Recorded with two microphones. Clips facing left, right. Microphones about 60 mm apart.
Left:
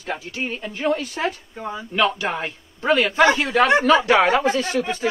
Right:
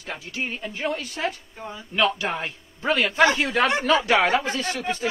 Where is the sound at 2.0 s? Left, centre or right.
Centre.